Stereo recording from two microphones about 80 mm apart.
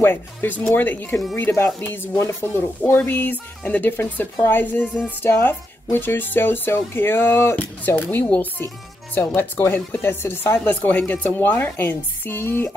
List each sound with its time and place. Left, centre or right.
0.0 s speech: left